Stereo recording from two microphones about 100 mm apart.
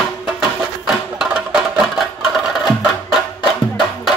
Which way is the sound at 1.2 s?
5° right (ahead or behind).